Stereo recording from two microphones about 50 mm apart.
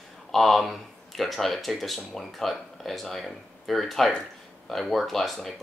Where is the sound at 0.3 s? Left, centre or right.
Centre.